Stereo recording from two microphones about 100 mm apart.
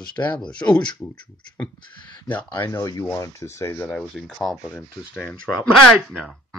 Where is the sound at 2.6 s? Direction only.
35° left (ahead or behind).